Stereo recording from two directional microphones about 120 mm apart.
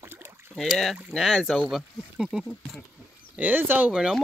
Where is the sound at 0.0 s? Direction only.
20° right (ahead or behind).